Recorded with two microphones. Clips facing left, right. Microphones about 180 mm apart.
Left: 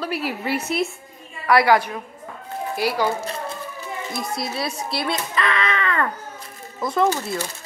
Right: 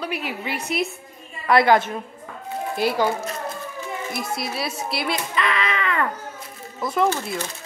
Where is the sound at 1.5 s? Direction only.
20° right (ahead or behind).